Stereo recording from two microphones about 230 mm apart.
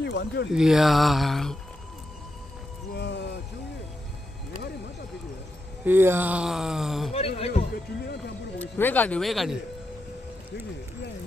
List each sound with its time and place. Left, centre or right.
0.0 s speech: left
0.5 s speech: centre
2.9 s a sound: left
5.9 s speech: centre
7.1 s a man's voice: left
8.5 s speech: centre